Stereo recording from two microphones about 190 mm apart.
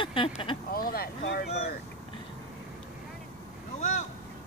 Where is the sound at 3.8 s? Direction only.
40° left (ahead or behind).